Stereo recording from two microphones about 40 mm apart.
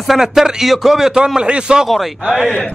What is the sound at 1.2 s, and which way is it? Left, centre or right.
Speech, right.